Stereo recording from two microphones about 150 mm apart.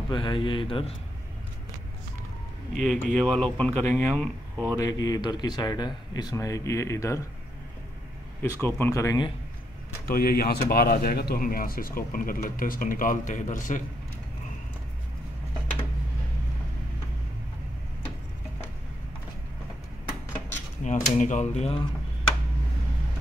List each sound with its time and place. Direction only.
0.1 s speech: 30° left (ahead or behind)
2.9 s speech: centre (ahead or behind)
4.7 s speech: 25° left (ahead or behind)
8.4 s speech: 15° left (ahead or behind)
10.0 s speech: 85° left; by 13.8 s 60° left (ahead or behind)
20.8 s speech: 55° left (ahead or behind)